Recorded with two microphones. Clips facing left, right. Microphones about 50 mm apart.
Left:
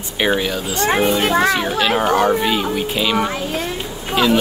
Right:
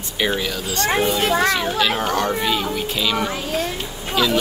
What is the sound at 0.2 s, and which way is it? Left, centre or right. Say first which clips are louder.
A child's voice: left 4 dB; left.